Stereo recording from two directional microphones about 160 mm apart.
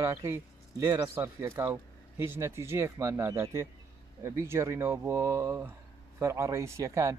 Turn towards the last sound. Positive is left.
turn(degrees=-20)  # may be behind; listen again after turning